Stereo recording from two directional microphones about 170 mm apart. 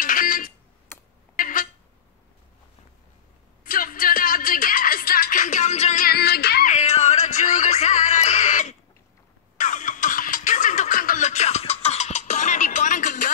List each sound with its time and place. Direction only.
0.0 s a sound: 55° left (ahead or behind)
3.6 s music: 55° left (ahead or behind)
6.0 s music: 65° left (ahead or behind)
6.7 s music: 40° left (ahead or behind)